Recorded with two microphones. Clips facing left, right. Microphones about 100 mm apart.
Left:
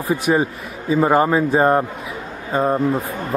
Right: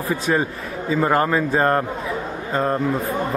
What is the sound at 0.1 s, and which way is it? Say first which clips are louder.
Speech: left 4 dB; 15° left (ahead or behind).